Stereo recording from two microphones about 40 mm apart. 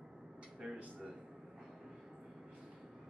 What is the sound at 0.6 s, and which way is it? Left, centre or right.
Speech, right.